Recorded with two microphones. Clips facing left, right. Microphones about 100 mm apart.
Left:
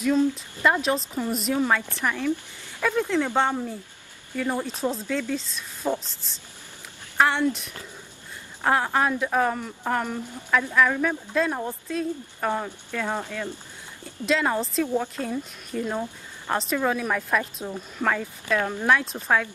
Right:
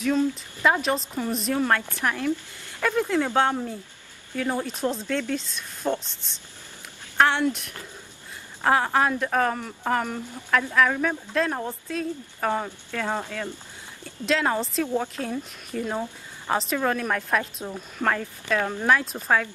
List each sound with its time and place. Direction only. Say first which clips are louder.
0.7 s a woman's voice: even; centre (ahead or behind)
2.0 s a woman's voice: even; 5° right (ahead or behind)
8.6 s a woman's voice: right 1 dB; centre (ahead or behind)
13.0 s speech: right 1 dB; 15° right (ahead or behind)
14.2 s a woman's voice: even; centre (ahead or behind)